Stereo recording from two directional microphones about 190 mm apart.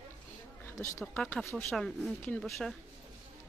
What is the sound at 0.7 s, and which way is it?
Speech, 10° left (ahead or behind).